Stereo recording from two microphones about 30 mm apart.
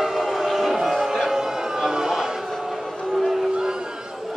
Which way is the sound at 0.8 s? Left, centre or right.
Centre.